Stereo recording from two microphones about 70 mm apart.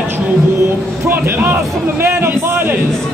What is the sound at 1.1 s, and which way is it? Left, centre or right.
Speech, right.